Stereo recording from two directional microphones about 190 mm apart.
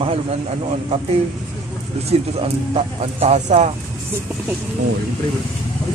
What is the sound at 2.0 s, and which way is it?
Speech, 30° right (ahead or behind).